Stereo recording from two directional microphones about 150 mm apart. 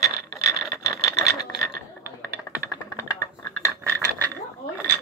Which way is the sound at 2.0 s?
10° right (ahead or behind).